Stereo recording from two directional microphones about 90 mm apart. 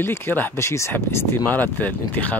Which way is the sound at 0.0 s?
25° left (ahead or behind).